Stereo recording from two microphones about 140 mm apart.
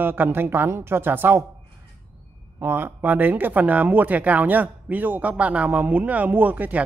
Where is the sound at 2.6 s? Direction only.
15° right (ahead or behind).